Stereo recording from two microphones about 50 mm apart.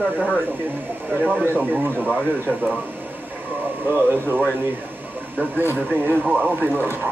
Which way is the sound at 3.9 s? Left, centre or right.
Right.